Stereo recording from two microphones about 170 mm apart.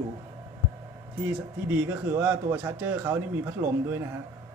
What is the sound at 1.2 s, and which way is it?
Speech, 10° right (ahead or behind).